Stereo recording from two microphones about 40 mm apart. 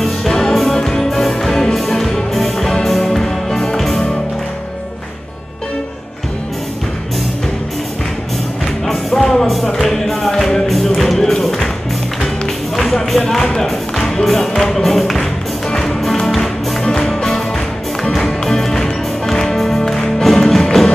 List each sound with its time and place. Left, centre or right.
0.0 s music: centre
8.8 s music: centre
12.7 s music: centre